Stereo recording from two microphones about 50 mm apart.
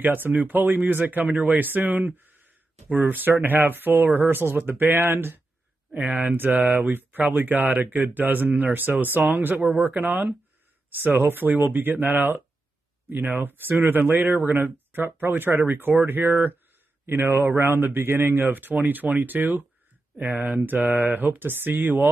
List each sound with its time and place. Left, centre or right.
0.0 s speech: right